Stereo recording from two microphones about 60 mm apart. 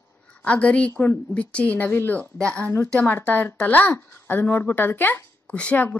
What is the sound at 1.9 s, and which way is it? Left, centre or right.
Speech, left.